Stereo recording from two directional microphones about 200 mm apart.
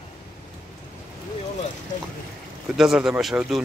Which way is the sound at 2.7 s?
Centre (ahead or behind).